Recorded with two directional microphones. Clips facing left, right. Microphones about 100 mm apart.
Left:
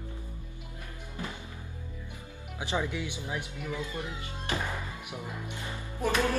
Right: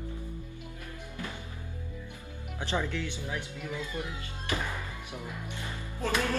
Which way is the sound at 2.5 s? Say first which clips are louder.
Even; 15° left (ahead or behind).